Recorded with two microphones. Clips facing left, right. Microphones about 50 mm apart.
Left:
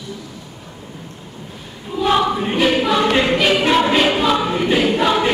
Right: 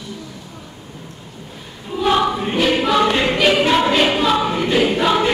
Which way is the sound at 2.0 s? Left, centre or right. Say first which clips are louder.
Even; centre.